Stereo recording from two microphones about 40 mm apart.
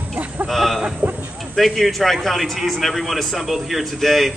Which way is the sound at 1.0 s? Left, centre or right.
Right.